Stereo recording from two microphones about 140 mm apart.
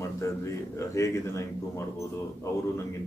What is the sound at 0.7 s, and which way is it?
Speech, 20° left (ahead or behind).